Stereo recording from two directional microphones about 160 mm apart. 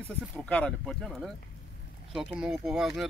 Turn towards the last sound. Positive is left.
turn(degrees=0)  # may be behind; listen again after turning